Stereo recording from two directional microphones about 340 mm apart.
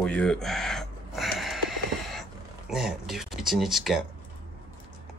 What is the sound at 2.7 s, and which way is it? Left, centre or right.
Speech, centre.